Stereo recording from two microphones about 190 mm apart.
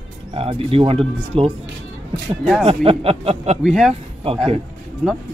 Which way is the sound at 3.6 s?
Centre (ahead or behind).